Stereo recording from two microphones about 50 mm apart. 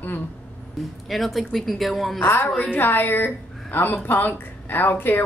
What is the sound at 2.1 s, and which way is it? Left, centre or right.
Speech, left.